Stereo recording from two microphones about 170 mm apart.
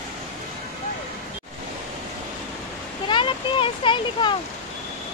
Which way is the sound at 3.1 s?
30° left (ahead or behind).